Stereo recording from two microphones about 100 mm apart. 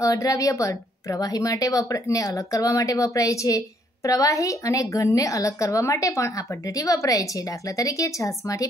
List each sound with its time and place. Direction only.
0.0 s a woman's voice: 35° left (ahead or behind)